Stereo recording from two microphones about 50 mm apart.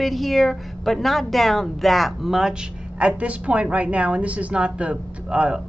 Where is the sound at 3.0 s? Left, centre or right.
Right.